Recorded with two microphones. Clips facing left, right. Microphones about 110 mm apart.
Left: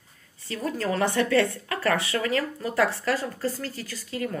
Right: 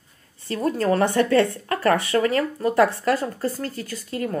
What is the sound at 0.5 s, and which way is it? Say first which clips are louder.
A woman's voice: right 6 dB; 45° right (ahead or behind).